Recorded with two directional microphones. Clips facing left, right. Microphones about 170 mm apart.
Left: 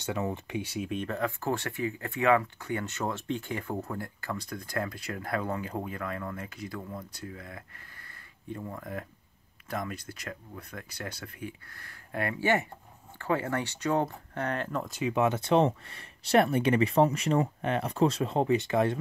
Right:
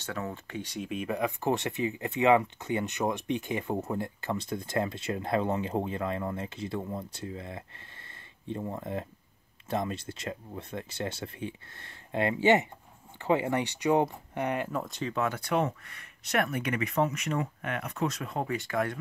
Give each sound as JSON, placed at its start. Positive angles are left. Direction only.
{"t": 0.0, "sound": "speech", "side_deg": 15}
{"t": 15.1, "sound": "speech", "side_deg": 20}